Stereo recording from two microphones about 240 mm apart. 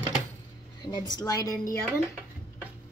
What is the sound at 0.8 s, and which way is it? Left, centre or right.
Speech, centre.